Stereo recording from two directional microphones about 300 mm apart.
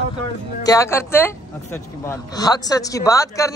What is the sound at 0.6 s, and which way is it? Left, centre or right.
Speech, centre.